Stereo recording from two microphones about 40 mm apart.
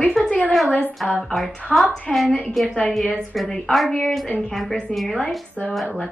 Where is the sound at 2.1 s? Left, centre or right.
Centre.